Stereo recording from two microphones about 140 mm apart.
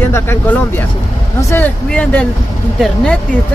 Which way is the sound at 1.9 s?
5° left (ahead or behind).